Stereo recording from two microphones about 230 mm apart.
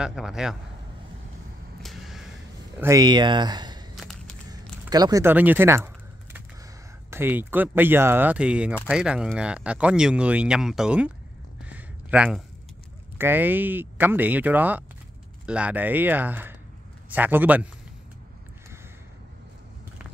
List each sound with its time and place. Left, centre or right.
0.0 s speech: centre
1.8 s vehicle: centre
2.8 s speech: centre
3.9 s a sound: centre
4.5 s speech: centre
7.1 s speech: centre
11.7 s a sound: centre
13.2 s speech: centre